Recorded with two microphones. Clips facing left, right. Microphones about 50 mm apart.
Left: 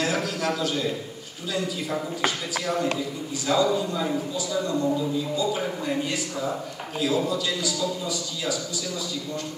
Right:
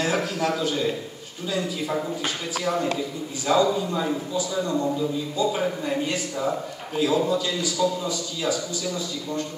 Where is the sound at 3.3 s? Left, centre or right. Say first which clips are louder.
Right 2 dB; right.